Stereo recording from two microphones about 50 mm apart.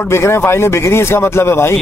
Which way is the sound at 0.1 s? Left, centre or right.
Left.